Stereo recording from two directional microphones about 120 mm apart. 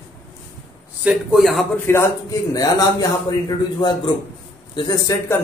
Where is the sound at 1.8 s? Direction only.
25° left (ahead or behind).